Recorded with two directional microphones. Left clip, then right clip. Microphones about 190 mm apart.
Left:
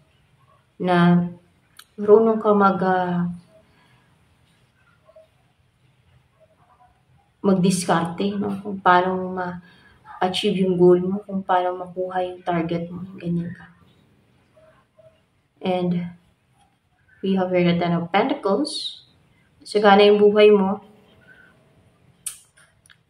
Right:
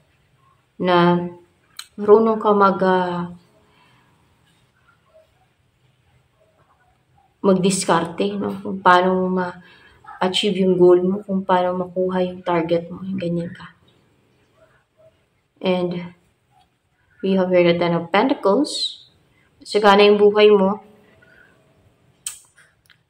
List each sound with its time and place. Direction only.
0.7 s speech: 15° right (ahead or behind)
7.4 s speech: 15° right (ahead or behind)
15.6 s speech: 15° right (ahead or behind)
17.2 s speech: 15° right (ahead or behind)